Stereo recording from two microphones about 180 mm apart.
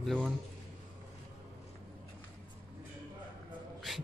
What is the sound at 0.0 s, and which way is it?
Speech, centre (ahead or behind).